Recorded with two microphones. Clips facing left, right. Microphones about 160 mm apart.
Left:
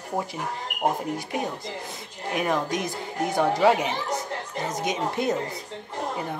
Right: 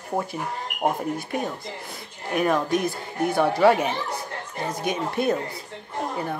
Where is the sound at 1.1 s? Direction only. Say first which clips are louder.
Right 1 dB; 15° left (ahead or behind).